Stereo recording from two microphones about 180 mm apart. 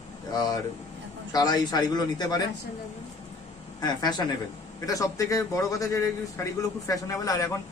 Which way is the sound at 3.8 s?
20° left (ahead or behind).